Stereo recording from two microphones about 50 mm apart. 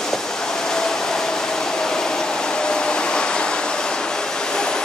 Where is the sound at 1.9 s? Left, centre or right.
Centre.